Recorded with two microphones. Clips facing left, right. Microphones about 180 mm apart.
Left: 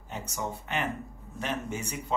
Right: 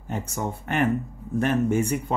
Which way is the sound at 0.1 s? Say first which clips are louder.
Right 6 dB; 50° right (ahead or behind).